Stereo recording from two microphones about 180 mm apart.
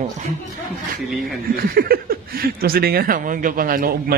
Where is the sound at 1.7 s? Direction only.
55° right (ahead or behind).